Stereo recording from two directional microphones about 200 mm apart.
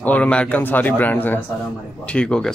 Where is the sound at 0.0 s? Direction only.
5° left (ahead or behind).